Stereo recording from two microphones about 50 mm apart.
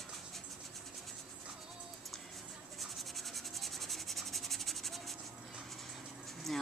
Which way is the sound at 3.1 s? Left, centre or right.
Centre.